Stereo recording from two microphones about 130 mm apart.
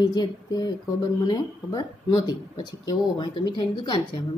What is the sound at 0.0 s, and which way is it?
A woman's voice, 30° left (ahead or behind).